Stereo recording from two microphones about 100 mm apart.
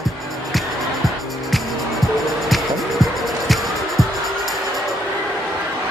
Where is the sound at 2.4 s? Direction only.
Centre (ahead or behind).